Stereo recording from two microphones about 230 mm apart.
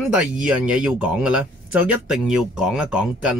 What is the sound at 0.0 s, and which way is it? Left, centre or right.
Speech, centre.